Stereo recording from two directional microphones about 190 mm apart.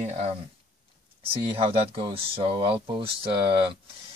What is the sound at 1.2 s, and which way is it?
Speech, 30° right (ahead or behind).